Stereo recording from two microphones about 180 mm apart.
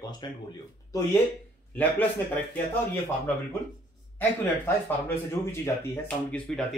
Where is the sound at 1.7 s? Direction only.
10° left (ahead or behind).